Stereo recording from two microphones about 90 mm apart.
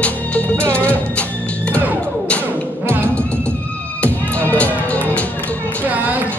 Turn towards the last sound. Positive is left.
turn(degrees=15)  # may be behind; listen again after turning